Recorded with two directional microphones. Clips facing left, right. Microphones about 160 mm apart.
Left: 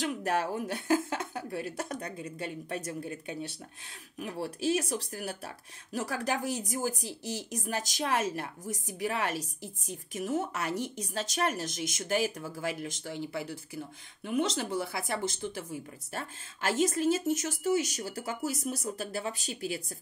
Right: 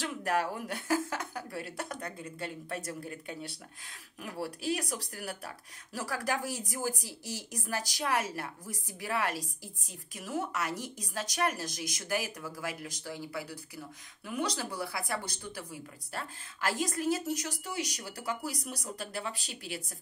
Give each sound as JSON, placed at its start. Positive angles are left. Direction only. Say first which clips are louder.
{"t": 0.0, "sound": "speech", "louder": "left 1 dB", "side_deg": 25}